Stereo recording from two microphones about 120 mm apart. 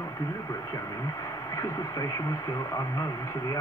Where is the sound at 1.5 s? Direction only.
25° left (ahead or behind).